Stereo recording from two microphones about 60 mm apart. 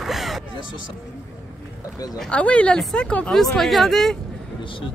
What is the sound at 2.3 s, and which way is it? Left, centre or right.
Speech, centre.